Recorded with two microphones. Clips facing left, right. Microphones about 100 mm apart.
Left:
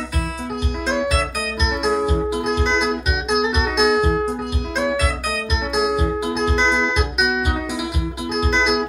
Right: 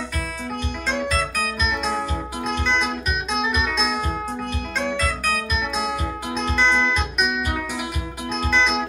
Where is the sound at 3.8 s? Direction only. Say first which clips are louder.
Left 8 dB; 15° left (ahead or behind).